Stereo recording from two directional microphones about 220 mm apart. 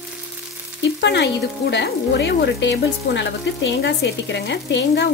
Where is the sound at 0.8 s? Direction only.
50° left (ahead or behind).